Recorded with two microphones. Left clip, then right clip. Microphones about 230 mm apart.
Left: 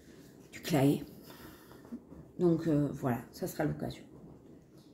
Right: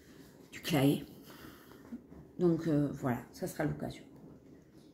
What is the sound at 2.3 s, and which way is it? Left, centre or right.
Speech, centre.